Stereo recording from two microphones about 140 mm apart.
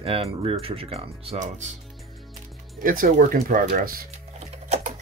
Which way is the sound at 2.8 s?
85° right.